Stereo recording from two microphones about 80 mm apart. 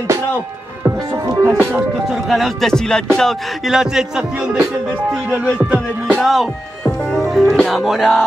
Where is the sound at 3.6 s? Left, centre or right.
Centre.